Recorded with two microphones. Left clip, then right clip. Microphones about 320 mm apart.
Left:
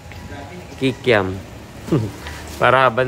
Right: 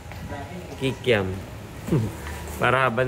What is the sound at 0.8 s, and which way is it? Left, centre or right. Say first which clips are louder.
Speech: left 6 dB; centre.